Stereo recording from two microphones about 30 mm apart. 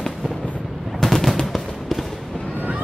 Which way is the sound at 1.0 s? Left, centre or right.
Centre.